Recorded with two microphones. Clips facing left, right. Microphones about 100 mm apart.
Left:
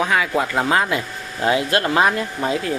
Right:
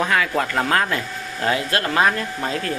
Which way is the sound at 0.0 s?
10° left (ahead or behind).